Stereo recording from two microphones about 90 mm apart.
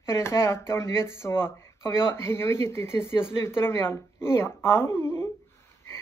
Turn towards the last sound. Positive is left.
turn(degrees=30)  # may be behind; listen again after turning